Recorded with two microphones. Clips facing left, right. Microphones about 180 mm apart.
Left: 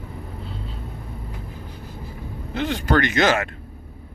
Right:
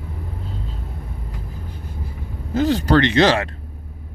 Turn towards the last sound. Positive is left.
turn(degrees=-30)  # may be behind; listen again after turning